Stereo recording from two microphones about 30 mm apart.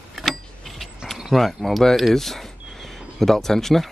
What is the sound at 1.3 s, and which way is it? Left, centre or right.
Speech, centre.